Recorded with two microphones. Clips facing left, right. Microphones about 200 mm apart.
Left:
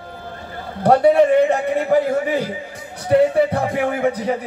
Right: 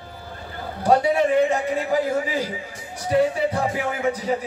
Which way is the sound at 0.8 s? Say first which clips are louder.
Left 6 dB; 60° left (ahead or behind).